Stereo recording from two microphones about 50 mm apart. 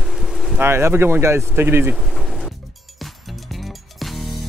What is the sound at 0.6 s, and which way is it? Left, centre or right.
Speech, right.